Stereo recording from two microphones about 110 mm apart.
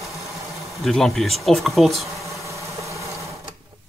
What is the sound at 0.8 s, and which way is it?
Speech, 5° left (ahead or behind).